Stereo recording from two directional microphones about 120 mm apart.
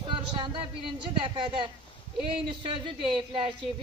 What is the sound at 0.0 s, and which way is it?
A man's voice, 45° right (ahead or behind).